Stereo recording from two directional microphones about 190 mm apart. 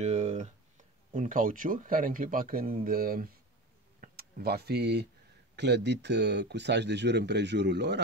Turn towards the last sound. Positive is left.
turn(degrees=-65)  # may be behind; listen again after turning